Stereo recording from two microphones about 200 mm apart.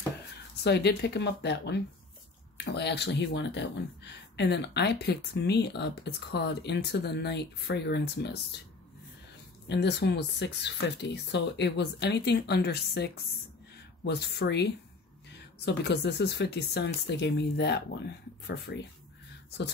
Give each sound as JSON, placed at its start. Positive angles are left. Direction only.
{"t": 0.7, "sound": "speech", "side_deg": 55}
{"t": 9.7, "sound": "speech", "side_deg": 60}